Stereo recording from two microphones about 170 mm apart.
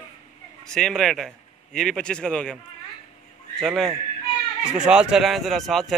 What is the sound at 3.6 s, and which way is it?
A man's voice, centre (ahead or behind).